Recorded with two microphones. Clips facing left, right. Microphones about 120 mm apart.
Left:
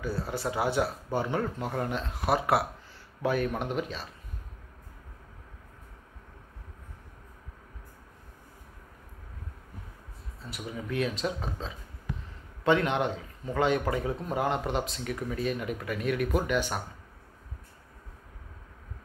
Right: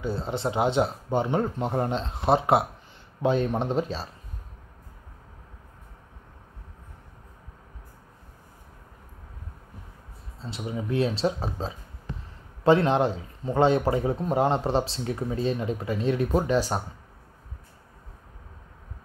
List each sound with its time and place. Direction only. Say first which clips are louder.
0.0 s speech: right 4 dB; 25° right (ahead or behind)
10.4 s speech: right 5 dB; 25° right (ahead or behind)